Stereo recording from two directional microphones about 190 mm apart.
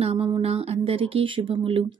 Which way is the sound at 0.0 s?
30° right (ahead or behind).